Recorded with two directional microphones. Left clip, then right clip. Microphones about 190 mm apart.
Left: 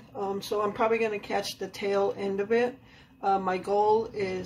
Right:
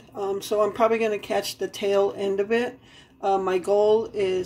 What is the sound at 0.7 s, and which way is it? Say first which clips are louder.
Speech: right 5 dB; 35° right (ahead or behind).